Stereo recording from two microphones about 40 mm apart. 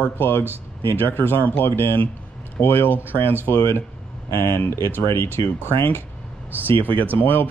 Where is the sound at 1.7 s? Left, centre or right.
Left.